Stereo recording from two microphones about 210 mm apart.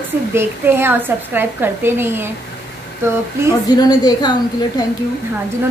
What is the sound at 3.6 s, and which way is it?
A woman's voice, 20° left (ahead or behind).